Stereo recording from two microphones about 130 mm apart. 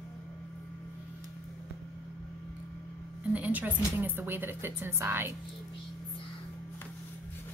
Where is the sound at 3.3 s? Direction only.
10° right (ahead or behind).